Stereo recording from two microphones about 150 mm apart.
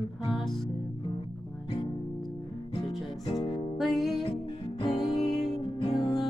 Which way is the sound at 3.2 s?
25° left (ahead or behind).